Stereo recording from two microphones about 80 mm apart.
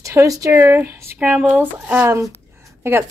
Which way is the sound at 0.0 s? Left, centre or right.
Right.